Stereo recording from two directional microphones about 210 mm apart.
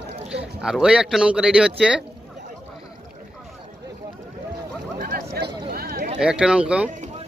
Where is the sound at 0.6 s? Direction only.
5° right (ahead or behind).